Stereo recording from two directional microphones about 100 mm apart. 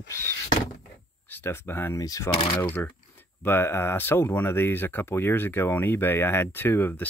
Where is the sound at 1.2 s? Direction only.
20° left (ahead or behind).